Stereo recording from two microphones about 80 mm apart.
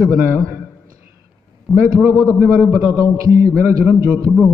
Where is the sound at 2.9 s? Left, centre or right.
Right.